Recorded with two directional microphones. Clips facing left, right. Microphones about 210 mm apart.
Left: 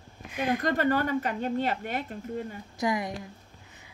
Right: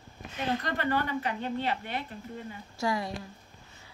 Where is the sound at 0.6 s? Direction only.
45° left (ahead or behind).